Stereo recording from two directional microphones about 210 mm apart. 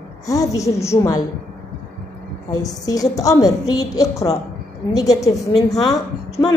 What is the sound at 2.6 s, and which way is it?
A woman's voice, 15° left (ahead or behind).